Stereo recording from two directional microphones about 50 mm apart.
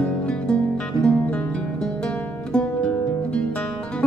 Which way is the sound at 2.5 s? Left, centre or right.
Left.